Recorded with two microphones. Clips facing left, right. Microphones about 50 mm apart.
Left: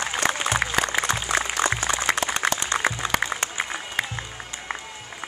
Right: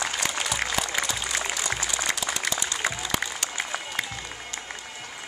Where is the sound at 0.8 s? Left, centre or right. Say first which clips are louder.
Left 5 dB; left.